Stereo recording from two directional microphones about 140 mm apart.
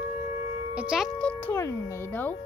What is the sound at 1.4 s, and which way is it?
Speech, 20° left (ahead or behind).